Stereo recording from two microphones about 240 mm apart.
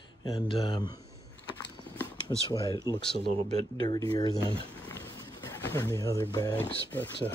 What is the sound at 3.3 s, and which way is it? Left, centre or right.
Speech, right.